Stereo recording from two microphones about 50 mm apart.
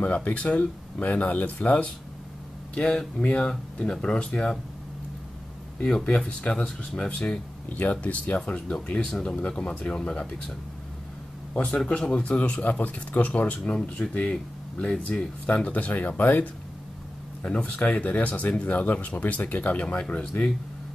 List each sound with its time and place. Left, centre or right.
0.0 s speech: left
2.7 s speech: centre
5.8 s speech: centre
8.5 s speech: centre
9.6 s speech: left
11.9 s speech: left
14.8 s speech: left
17.5 s speech: left